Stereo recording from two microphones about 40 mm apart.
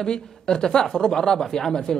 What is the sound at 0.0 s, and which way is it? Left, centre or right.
A man's voice, centre.